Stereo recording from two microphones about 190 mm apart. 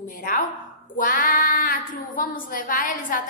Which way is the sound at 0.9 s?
45° left (ahead or behind).